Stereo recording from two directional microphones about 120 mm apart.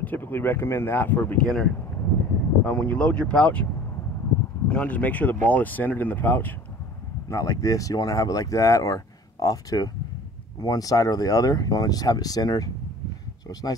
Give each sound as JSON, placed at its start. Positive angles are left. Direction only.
{"t": 0.0, "sound": "speech", "side_deg": 15}
{"t": 4.6, "sound": "speech", "side_deg": 10}
{"t": 7.2, "sound": "speech", "side_deg": 30}